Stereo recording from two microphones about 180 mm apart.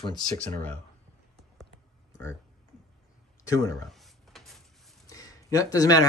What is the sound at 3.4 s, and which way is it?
Speech, 20° left (ahead or behind).